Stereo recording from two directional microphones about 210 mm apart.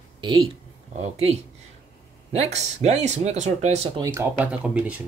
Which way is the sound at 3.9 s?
15° right (ahead or behind).